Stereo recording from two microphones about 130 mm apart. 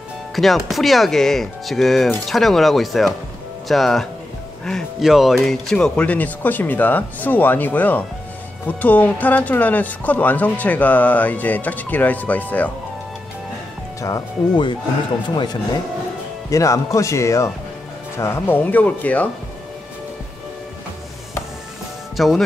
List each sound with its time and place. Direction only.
0.4 s speech: centre (ahead or behind)
15.2 s speech: 35° left (ahead or behind); by 19.2 s 10° left (ahead or behind)
22.1 s speech: centre (ahead or behind)